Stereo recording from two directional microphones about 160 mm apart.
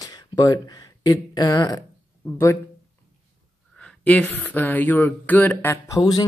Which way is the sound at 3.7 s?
5° left (ahead or behind).